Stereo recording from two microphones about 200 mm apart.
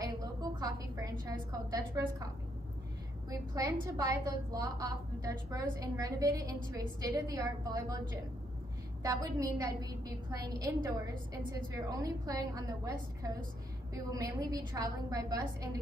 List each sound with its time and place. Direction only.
0.0 s a woman's voice: 20° right (ahead or behind)
3.3 s a woman's voice: 15° right (ahead or behind)
9.0 s a woman's voice: 15° right (ahead or behind)